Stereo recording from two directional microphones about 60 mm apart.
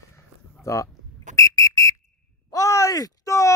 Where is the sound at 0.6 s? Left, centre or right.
Left.